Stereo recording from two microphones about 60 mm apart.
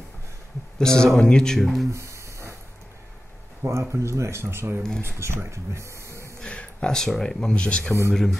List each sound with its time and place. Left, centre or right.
0.7 s speech: centre
1.9 s a sound: right
3.8 s speech: right
6.4 s a sound: centre
7.0 s speech: centre
8.1 s speech: centre